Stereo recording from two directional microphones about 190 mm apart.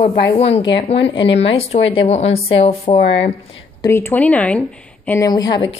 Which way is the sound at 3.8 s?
10° left (ahead or behind).